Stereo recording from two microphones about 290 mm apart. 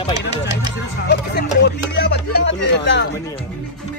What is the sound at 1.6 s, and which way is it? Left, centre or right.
Speech, left.